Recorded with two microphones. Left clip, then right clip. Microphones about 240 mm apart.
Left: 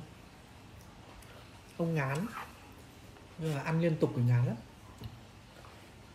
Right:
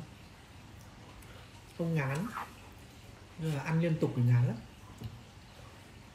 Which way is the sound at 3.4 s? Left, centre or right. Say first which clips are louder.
Left 2 dB; centre.